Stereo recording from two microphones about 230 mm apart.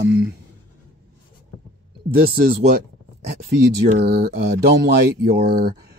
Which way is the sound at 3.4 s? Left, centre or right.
Right.